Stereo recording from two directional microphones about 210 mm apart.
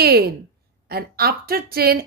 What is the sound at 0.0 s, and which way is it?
A woman's voice, 45° right (ahead or behind).